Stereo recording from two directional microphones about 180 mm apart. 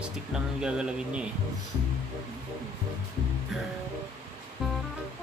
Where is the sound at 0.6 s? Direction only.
5° right (ahead or behind).